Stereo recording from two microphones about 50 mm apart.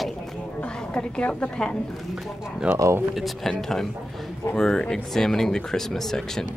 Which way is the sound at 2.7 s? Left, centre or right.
Right.